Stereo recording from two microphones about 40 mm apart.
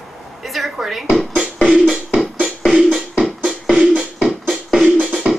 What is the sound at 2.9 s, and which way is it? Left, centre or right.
Music, centre.